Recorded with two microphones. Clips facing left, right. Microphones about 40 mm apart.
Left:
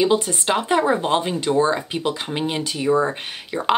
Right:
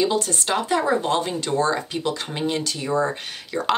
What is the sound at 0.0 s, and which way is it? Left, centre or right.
Speech, left.